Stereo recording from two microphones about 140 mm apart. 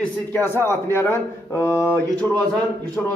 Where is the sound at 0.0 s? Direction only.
15° left (ahead or behind).